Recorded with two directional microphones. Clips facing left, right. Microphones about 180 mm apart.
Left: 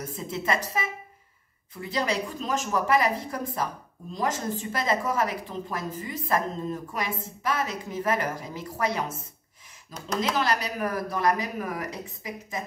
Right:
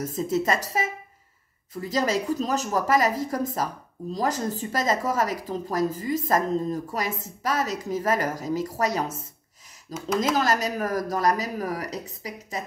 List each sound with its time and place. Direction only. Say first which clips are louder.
0.0 s a woman's voice: right 7 dB; 40° right (ahead or behind)
9.9 s speech: right 4 dB; 5° right (ahead or behind)
10.3 s a woman's voice: right 3 dB; 45° right (ahead or behind)